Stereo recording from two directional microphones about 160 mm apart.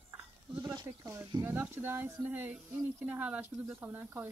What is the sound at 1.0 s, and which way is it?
Speech, 15° right (ahead or behind).